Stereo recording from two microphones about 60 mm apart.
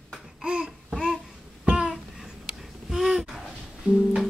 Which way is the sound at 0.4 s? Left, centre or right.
Centre.